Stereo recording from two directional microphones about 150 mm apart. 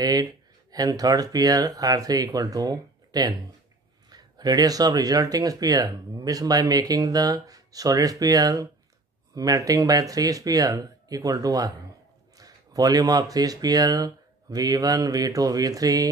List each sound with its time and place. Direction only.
0.0 s speech: 25° right (ahead or behind)